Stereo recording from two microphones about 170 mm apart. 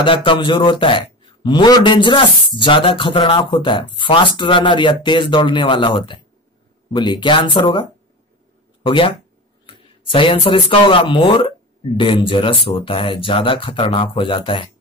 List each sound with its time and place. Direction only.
0.0 s a man's voice: 30° left (ahead or behind)
8.8 s speech: 30° left (ahead or behind)